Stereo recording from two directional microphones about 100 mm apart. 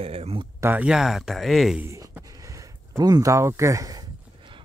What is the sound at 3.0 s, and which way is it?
Speech, 40° right (ahead or behind).